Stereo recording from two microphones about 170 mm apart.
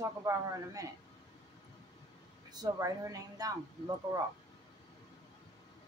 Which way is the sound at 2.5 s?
20° right (ahead or behind).